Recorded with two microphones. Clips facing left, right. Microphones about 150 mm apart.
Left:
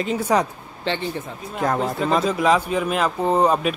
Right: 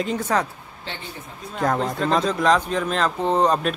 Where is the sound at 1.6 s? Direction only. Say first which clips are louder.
Even; 5° left (ahead or behind).